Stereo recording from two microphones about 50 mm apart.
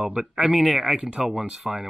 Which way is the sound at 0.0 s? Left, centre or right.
Centre.